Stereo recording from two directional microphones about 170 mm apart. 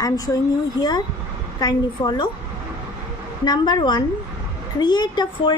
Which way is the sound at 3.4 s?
25° left (ahead or behind).